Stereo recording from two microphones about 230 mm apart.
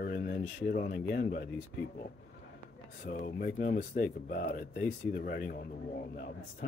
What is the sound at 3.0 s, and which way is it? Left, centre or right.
Speech, left.